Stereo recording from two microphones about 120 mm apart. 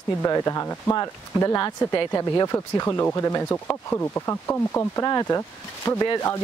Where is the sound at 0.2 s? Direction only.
30° left (ahead or behind).